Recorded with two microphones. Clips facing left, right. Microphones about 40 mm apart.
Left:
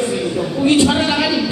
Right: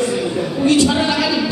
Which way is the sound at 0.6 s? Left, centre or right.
Left.